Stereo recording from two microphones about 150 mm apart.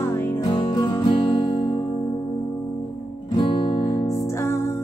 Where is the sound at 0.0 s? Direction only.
15° left (ahead or behind).